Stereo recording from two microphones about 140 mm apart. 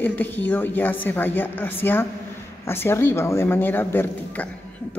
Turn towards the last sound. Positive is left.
turn(degrees=15)  # may be behind; listen again after turning